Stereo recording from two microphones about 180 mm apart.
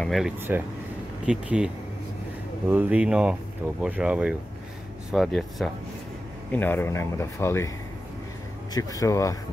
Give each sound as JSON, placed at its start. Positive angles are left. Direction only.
{"t": 0.0, "sound": "speech", "side_deg": 0}
{"t": 2.7, "sound": "speech", "side_deg": -10}
{"t": 6.5, "sound": "speech", "side_deg": 10}
{"t": 8.7, "sound": "speech", "side_deg": 20}